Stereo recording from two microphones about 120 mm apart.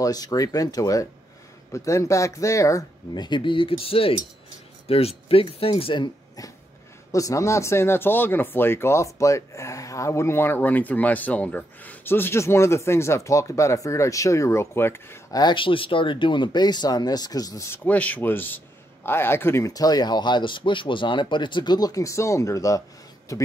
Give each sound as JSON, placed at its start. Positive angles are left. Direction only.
{"t": 0.0, "sound": "speech", "side_deg": 30}
{"t": 3.2, "sound": "speech", "side_deg": 40}
{"t": 7.1, "sound": "speech", "side_deg": 25}
{"t": 15.3, "sound": "speech", "side_deg": 40}
{"t": 17.8, "sound": "speech", "side_deg": 15}